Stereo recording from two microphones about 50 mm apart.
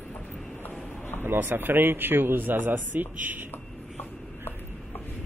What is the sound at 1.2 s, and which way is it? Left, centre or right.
A man's voice, right.